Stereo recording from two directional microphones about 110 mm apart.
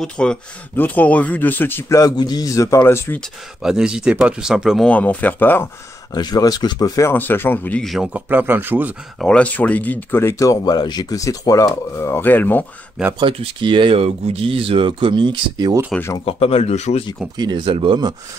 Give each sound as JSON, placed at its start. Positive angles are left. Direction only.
{"t": 0.0, "sound": "speech", "side_deg": 10}
{"t": 3.2, "sound": "speech", "side_deg": -5}
{"t": 4.8, "sound": "speech", "side_deg": 15}
{"t": 6.1, "sound": "speech", "side_deg": 40}
{"t": 7.0, "sound": "speech", "side_deg": 20}
{"t": 7.8, "sound": "a man's voice", "side_deg": 0}
{"t": 8.1, "sound": "speech", "side_deg": -15}
{"t": 9.2, "sound": "speech", "side_deg": 10}
{"t": 13.2, "sound": "speech", "side_deg": -55}
{"t": 15.9, "sound": "a man's voice", "side_deg": 5}
{"t": 16.3, "sound": "speech", "side_deg": 60}
{"t": 17.4, "sound": "speech", "side_deg": -40}